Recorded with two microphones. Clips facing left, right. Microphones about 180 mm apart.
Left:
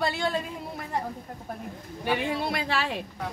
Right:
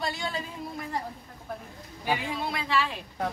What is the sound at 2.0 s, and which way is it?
Speech, 70° left (ahead or behind).